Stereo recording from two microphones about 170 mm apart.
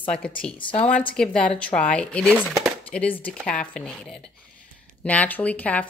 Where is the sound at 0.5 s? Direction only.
30° left (ahead or behind).